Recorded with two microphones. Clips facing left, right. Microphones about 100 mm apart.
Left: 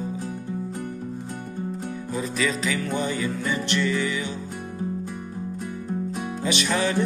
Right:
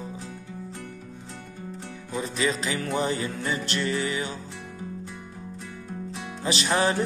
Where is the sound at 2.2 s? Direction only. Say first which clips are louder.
Even; 30° right (ahead or behind).